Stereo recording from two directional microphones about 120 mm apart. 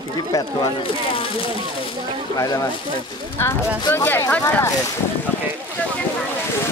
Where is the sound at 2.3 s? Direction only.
30° left (ahead or behind).